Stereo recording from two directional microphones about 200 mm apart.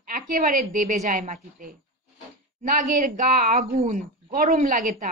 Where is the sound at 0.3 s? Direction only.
45° right (ahead or behind).